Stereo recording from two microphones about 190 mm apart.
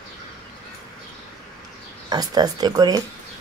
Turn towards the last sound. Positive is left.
turn(degrees=-20)  # may be behind; listen again after turning